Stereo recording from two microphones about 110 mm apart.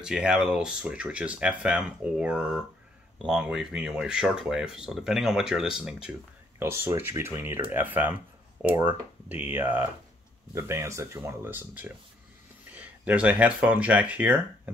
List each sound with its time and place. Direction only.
0.0 s speech: 5° right (ahead or behind)
6.6 s speech: 20° right (ahead or behind)